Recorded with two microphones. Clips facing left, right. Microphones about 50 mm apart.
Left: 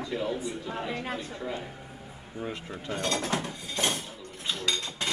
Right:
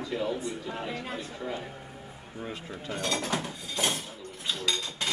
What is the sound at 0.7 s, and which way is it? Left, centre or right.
Speech, centre.